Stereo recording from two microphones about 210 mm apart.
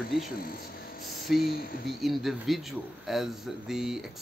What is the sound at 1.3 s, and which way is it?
Speech, centre (ahead or behind).